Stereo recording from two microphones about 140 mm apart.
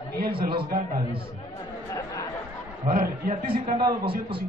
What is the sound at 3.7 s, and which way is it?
Speech, 35° right (ahead or behind).